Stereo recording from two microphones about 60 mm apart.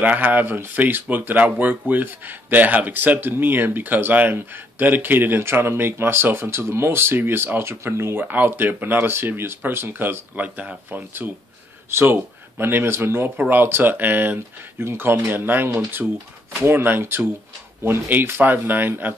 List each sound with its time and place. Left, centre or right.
0.0 s speech: right
8.3 s speech: right
10.3 s speech: right